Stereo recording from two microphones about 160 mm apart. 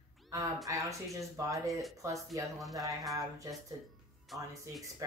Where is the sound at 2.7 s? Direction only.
20° right (ahead or behind).